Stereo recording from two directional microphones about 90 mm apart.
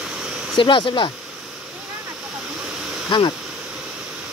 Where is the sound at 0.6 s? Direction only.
70° left (ahead or behind).